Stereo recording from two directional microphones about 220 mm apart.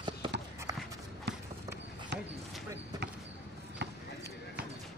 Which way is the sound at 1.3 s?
50° right (ahead or behind).